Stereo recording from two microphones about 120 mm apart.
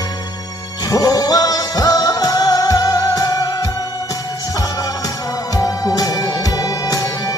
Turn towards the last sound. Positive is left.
turn(degrees=30)  # may be behind; listen again after turning